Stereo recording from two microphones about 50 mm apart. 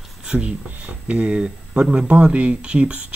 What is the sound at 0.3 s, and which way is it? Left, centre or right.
Speech, right.